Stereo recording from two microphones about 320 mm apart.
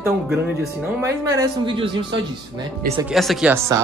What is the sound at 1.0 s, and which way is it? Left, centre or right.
Speech, centre.